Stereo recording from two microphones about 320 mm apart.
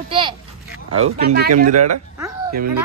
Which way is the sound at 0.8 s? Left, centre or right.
Right.